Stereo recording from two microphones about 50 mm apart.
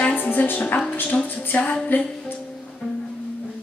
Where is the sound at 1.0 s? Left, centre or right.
Left.